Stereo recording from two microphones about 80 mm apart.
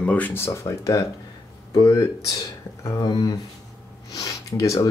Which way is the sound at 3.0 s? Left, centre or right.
Left.